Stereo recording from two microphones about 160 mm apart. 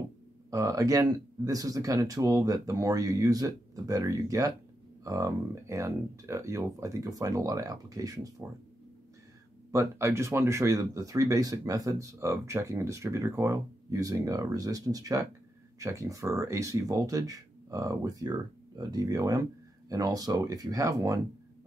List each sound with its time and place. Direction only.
0.5 s speech: 20° right (ahead or behind)
9.7 s speech: 20° right (ahead or behind)